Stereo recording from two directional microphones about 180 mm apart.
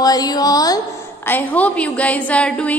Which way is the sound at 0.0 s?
20° left (ahead or behind).